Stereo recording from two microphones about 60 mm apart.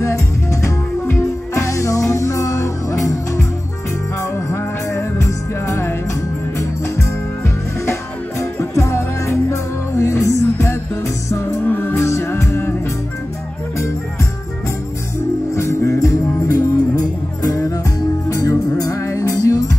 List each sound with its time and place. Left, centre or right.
0.0 s music: left
11.2 s music: left
11.6 s music: left
12.0 s music: left
15.5 s music: left
18.3 s music: left